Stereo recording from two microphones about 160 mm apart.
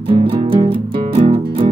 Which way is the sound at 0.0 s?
35° right (ahead or behind).